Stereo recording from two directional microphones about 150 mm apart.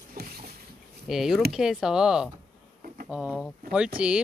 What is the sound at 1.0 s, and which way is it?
Speech, centre (ahead or behind).